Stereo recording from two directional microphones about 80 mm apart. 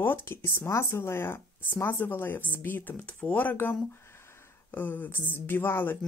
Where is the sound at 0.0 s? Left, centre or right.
Left.